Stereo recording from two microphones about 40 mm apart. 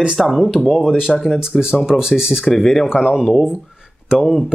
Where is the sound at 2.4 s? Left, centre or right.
Centre.